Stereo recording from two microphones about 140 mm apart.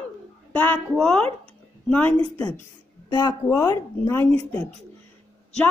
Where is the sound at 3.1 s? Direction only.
30° left (ahead or behind).